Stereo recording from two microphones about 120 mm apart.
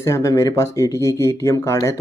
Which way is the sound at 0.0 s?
25° left (ahead or behind).